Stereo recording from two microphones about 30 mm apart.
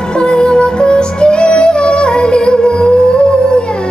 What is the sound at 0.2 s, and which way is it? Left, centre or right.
Music, left.